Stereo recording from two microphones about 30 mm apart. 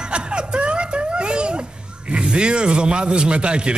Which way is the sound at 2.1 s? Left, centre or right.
Right.